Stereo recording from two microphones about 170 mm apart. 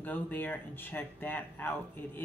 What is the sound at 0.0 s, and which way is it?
Speech, 10° left (ahead or behind).